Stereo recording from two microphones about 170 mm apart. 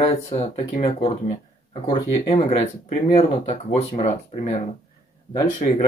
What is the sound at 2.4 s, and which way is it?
Speech, 40° left (ahead or behind).